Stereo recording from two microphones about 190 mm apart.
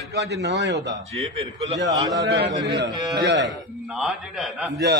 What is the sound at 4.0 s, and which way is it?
Speech, 5° right (ahead or behind).